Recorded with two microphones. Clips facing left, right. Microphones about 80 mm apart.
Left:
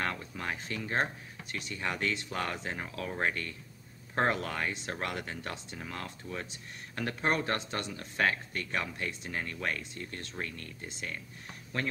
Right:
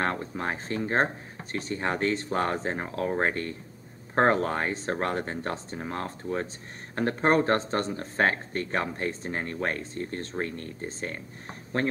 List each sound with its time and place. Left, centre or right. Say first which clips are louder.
0.0 s speech: right 6 dB; right